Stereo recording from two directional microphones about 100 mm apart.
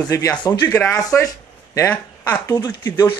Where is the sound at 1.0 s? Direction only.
35° left (ahead or behind).